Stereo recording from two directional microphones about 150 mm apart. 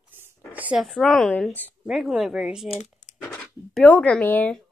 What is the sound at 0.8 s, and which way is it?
Speech, centre (ahead or behind).